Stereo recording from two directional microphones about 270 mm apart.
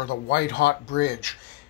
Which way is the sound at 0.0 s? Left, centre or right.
Left.